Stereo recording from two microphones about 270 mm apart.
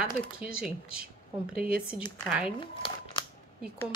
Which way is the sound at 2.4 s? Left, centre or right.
Centre.